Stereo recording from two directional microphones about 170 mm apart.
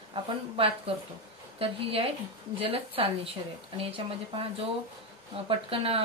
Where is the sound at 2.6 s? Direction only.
35° right (ahead or behind).